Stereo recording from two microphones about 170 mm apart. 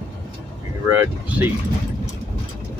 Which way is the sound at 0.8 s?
15° right (ahead or behind).